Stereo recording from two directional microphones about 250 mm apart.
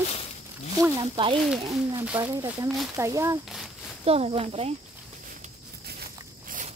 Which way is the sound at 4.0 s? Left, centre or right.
Right.